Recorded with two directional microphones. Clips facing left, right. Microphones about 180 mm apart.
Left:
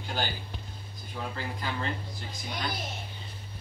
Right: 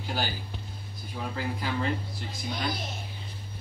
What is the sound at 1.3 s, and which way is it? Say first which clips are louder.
Speech: right 6 dB; 5° right (ahead or behind).